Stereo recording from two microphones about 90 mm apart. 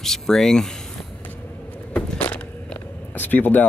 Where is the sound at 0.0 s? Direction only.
5° left (ahead or behind).